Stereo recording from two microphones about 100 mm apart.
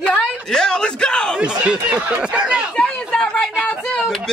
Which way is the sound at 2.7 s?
10° left (ahead or behind).